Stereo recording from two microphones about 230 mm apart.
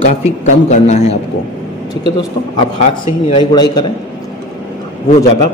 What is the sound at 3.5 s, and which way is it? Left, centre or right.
Speech, centre.